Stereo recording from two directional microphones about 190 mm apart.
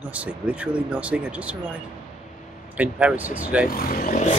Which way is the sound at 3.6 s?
50° left (ahead or behind).